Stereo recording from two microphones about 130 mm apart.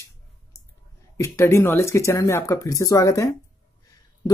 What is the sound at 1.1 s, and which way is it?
Speech, 20° left (ahead or behind).